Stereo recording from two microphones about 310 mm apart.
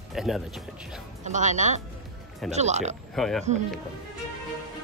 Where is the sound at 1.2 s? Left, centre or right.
Right.